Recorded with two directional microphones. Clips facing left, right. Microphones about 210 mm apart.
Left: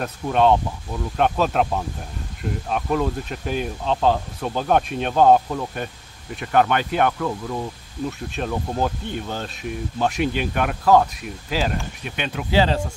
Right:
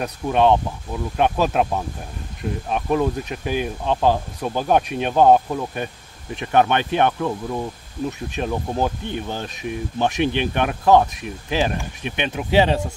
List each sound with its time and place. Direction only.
0.0 s speech: 15° right (ahead or behind)
2.9 s speech: 10° right (ahead or behind)
6.3 s speech: 20° right (ahead or behind)